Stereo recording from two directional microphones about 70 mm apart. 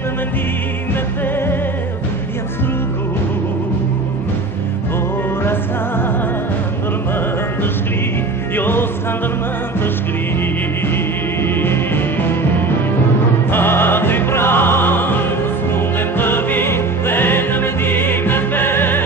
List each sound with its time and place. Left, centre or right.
8.5 s music: left
11.6 s music: left